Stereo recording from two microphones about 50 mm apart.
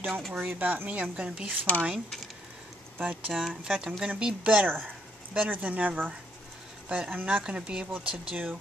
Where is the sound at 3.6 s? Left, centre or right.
Centre.